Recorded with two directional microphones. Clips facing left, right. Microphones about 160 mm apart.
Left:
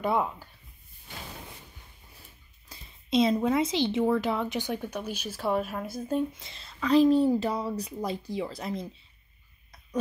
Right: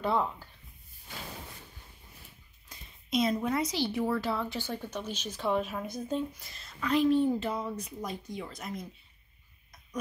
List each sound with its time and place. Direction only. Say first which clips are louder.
0.0 s speech: left 2 dB; 15° left (ahead or behind)
2.7 s a woman's voice: left 5 dB; 30° left (ahead or behind); by 6.2 s 10° left (ahead or behind)
6.3 s a woman's voice: left 2 dB; 25° left (ahead or behind)